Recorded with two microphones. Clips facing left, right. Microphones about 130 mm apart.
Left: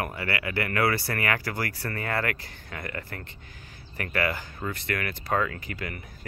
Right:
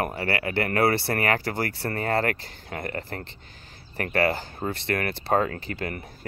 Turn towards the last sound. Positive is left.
turn(degrees=-35)  # may be behind; listen again after turning